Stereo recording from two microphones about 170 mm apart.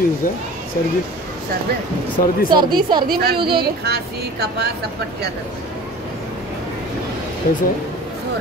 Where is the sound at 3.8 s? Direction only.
70° right (ahead or behind).